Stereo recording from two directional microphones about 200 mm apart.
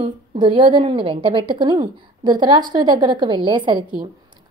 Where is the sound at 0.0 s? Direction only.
25° right (ahead or behind).